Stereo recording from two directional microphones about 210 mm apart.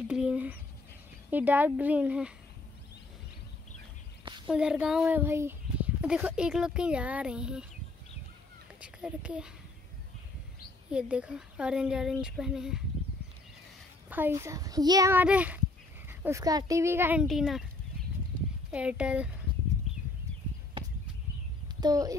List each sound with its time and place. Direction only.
0.1 s speech: 5° right (ahead or behind)
4.2 s a sound: 20° right (ahead or behind)
4.5 s speech: 5° right (ahead or behind)
8.8 s a child's voice: 5° right (ahead or behind)
10.9 s speech: 5° right (ahead or behind)
14.0 s speech: 10° right (ahead or behind)
18.7 s speech: 5° right (ahead or behind)
21.8 s speech: 15° right (ahead or behind)